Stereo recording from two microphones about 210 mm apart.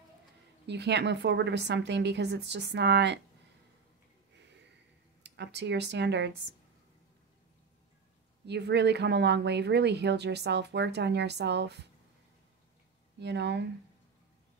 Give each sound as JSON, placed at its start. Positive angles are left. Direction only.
{"t": 0.7, "sound": "a woman's voice", "side_deg": -55}
{"t": 5.2, "sound": "speech", "side_deg": -55}
{"t": 8.5, "sound": "speech", "side_deg": -55}
{"t": 13.2, "sound": "a woman's voice", "side_deg": -55}